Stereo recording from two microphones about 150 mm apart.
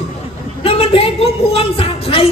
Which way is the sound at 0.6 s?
40° left (ahead or behind).